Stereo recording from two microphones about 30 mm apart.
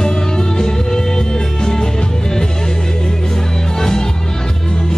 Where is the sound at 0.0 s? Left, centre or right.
Left.